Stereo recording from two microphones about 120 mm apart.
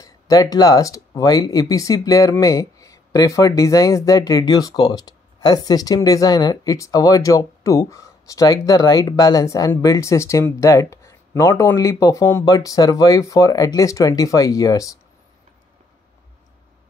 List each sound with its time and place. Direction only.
0.0 s speech: 30° left (ahead or behind)